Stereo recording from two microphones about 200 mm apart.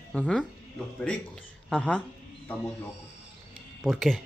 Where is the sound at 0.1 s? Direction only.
5° left (ahead or behind).